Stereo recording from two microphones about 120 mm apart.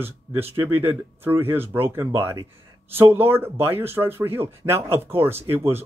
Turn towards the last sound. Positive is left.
turn(degrees=-20)  # may be behind; listen again after turning